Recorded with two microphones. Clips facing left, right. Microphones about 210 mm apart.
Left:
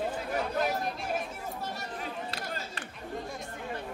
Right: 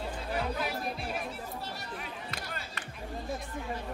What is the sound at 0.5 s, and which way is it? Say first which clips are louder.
Chatter: left 4 dB; 45° left (ahead or behind).